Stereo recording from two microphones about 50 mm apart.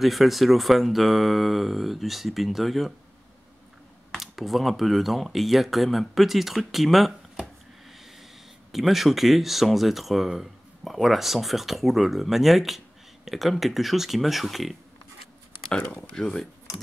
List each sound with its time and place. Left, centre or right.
0.0 s speech: centre
4.2 s speech: centre
8.7 s speech: centre
16.2 s speech: centre